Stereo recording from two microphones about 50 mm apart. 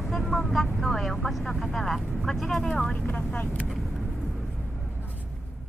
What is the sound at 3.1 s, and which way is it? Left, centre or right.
Speech, left.